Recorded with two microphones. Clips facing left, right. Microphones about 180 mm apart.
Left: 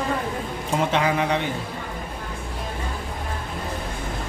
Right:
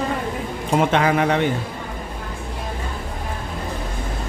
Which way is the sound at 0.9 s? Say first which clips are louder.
Right 2 dB; 55° right (ahead or behind).